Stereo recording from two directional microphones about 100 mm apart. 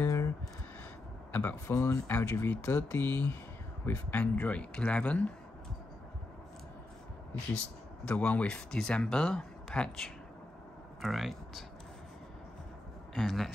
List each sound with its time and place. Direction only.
0.0 s a sound: 30° left (ahead or behind)
1.3 s speech: 20° left (ahead or behind)
7.5 s speech: 10° left (ahead or behind)
13.1 s speech: centre (ahead or behind)